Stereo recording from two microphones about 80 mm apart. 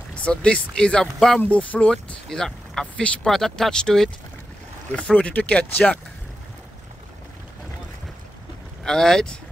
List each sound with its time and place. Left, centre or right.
0.1 s speech: centre
8.8 s speech: centre